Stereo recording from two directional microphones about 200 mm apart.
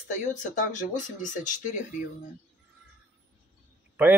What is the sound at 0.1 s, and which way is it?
Speech, 40° left (ahead or behind).